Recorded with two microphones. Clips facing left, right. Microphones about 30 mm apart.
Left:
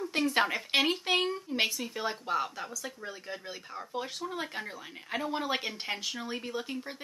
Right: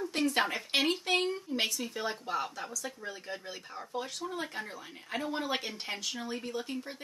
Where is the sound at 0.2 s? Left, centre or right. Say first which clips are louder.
Left 2 dB; centre.